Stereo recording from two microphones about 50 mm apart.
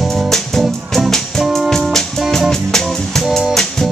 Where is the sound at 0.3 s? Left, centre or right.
Centre.